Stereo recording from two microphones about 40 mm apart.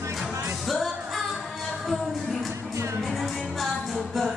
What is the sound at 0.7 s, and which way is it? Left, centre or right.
Music, centre.